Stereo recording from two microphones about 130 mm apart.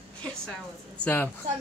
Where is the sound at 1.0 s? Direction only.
15° left (ahead or behind).